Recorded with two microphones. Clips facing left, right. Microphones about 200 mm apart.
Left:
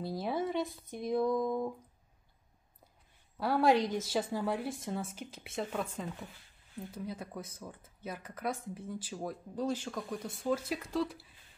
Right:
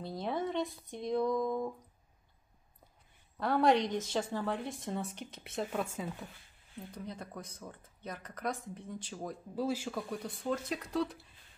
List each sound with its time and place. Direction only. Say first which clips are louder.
0.0 s a woman's voice: left 1 dB; 5° left (ahead or behind)
3.3 s a woman's voice: even; 5° left (ahead or behind)
9.6 s a woman's voice: right 1 dB; 10° right (ahead or behind)